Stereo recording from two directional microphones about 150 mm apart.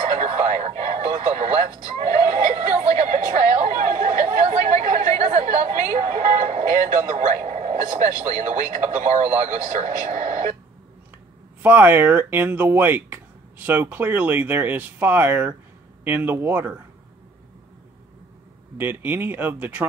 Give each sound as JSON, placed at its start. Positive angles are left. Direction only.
{"t": 0.2, "sound": "a sound", "side_deg": -50}
{"t": 7.4, "sound": "speech", "side_deg": -50}
{"t": 11.6, "sound": "speech", "side_deg": -10}
{"t": 18.8, "sound": "speech", "side_deg": -15}